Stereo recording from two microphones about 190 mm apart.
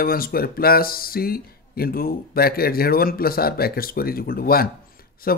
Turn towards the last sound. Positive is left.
turn(degrees=50)  # may be behind; listen again after turning